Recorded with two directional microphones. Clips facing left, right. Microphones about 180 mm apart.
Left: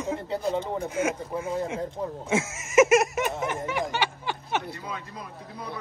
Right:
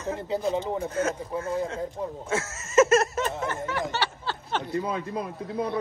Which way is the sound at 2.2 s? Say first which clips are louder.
Left 3 dB; 15° left (ahead or behind).